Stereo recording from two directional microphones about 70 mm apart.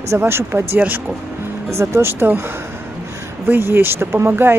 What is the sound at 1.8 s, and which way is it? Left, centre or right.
Speech, right.